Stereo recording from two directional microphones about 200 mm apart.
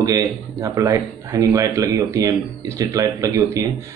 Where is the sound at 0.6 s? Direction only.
15° right (ahead or behind).